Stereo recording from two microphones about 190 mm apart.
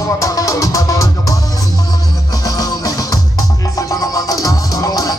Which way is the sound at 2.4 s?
20° left (ahead or behind).